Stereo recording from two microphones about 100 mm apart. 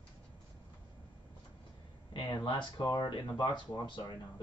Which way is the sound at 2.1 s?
50° left (ahead or behind).